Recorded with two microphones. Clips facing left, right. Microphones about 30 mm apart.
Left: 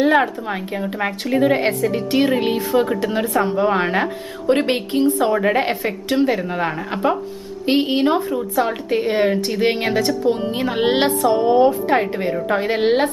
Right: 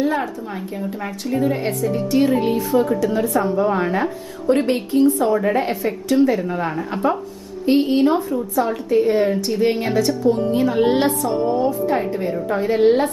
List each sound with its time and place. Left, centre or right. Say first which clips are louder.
0.0 s a woman's voice: left 5 dB; left